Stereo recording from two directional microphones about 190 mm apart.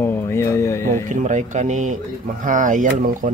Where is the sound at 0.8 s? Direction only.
40° right (ahead or behind).